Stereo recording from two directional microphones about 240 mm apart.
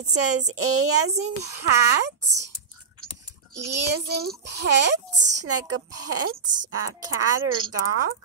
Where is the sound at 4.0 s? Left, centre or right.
Right.